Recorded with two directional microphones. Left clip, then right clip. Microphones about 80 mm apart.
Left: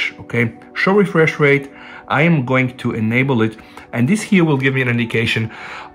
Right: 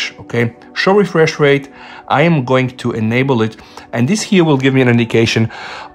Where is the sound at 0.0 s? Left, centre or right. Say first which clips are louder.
Right 1 dB; right.